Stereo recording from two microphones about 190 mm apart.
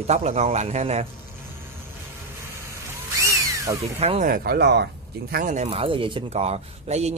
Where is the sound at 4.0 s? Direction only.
35° right (ahead or behind).